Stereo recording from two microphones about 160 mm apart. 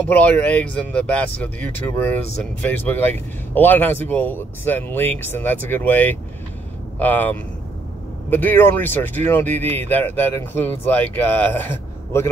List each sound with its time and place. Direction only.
0.0 s speech: 10° left (ahead or behind)